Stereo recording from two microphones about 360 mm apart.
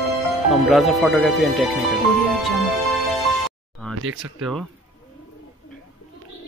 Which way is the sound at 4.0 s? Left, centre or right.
Right.